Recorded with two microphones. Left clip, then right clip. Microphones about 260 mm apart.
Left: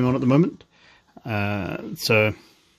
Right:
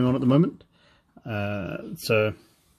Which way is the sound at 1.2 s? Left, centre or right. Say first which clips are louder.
Left 4 dB; left.